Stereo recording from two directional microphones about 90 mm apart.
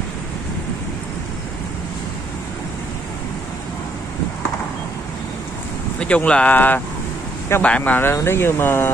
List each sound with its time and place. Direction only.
5.9 s speech: 15° left (ahead or behind)